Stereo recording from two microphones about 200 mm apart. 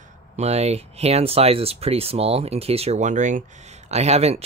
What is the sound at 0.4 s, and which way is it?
Speech, 30° right (ahead or behind).